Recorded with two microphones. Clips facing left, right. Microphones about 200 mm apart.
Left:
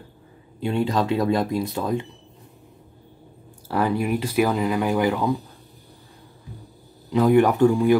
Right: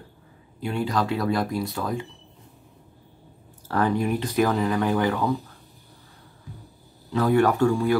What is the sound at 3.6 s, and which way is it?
Speech, 10° left (ahead or behind).